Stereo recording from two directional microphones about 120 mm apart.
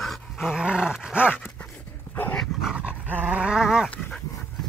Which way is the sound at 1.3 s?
15° left (ahead or behind).